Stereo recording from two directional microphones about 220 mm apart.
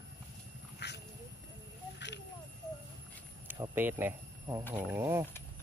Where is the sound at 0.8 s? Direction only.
50° left (ahead or behind).